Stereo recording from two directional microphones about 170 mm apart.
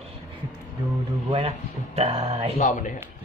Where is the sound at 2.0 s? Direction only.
40° right (ahead or behind).